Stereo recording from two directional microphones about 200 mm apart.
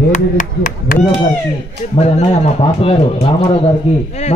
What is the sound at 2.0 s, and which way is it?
Speech, 35° left (ahead or behind).